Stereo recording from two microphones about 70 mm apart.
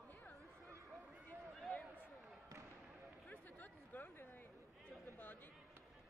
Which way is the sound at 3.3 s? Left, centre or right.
Left.